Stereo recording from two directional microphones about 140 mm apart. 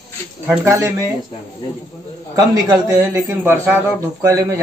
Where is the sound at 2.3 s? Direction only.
25° right (ahead or behind).